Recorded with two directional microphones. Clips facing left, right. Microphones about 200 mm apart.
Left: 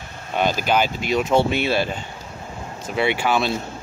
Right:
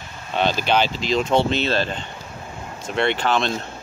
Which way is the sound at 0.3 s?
10° left (ahead or behind).